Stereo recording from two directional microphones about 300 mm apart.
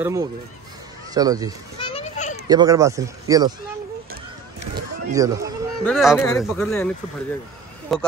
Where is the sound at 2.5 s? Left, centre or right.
Centre.